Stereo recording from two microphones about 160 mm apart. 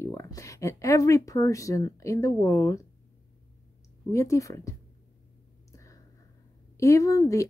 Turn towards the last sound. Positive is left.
turn(degrees=20)  # may be behind; listen again after turning